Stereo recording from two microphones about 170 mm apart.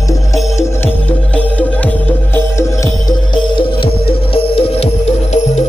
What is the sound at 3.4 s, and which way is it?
Music, 30° left (ahead or behind).